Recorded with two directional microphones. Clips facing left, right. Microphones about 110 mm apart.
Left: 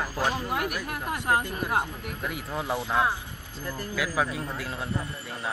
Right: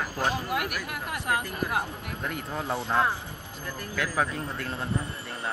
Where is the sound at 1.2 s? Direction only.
30° left (ahead or behind).